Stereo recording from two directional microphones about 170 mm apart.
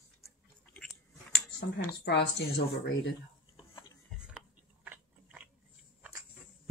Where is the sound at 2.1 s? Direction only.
90° left.